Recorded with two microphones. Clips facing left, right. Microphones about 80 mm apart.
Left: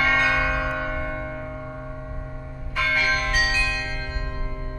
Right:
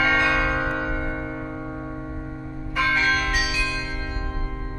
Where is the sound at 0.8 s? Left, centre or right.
Centre.